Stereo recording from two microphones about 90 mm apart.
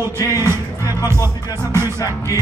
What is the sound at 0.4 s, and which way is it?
Music, 30° right (ahead or behind).